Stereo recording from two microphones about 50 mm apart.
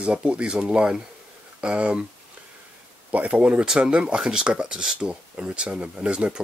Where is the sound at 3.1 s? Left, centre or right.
Right.